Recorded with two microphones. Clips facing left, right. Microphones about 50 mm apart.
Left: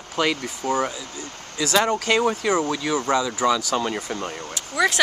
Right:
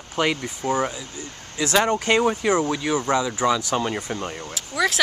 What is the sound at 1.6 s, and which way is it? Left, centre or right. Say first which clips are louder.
Speech: even; centre.